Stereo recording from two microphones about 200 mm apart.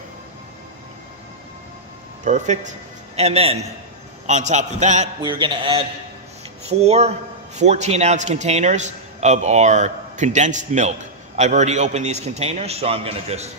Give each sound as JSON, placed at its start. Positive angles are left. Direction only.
{"t": 2.2, "sound": "a man's voice", "side_deg": -35}
{"t": 5.2, "sound": "mantra", "side_deg": -25}
{"t": 6.6, "sound": "a man's voice", "side_deg": -30}